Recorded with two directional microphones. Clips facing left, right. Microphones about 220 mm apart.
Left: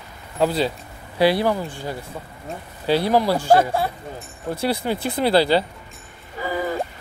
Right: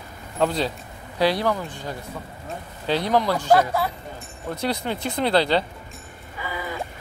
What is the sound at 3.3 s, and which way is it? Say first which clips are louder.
Speech: left 2 dB; 30° left (ahead or behind).